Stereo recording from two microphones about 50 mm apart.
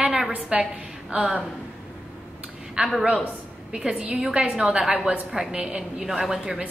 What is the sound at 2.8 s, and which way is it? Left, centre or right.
A woman's voice, centre.